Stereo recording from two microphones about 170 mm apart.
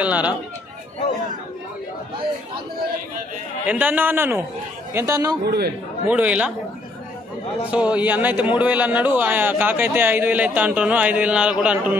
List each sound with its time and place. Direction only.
0.0 s a man's voice: 10° right (ahead or behind)
3.6 s a man's voice: 10° right (ahead or behind)
5.4 s a man's voice: 70° right (ahead or behind)
6.0 s a man's voice: 10° right (ahead or behind)
7.7 s a man's voice: 10° right (ahead or behind)